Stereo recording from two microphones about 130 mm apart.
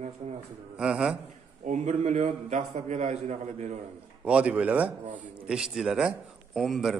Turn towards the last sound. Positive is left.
turn(degrees=0)  # may be behind; listen again after turning